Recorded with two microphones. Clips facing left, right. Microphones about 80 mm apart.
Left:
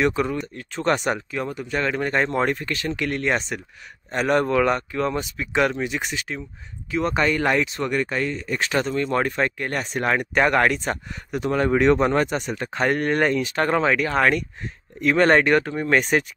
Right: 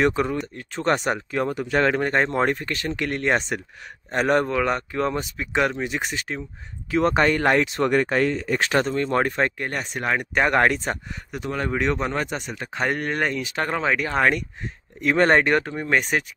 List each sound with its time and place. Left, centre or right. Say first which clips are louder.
0.0 s speech: right 1 dB; right
1.6 s speech: right 4 dB; right
2.0 s speech: right 1 dB; right
4.5 s speech: left 3 dB; centre
5.9 s speech: even; right
6.9 s speech: right 2 dB; right
8.7 s speech: even; right
9.7 s speech: left 2 dB; centre
10.5 s speech: even; right
11.3 s speech: left 6 dB; centre; by 15.7 s right
15.7 s speech: left 2 dB; centre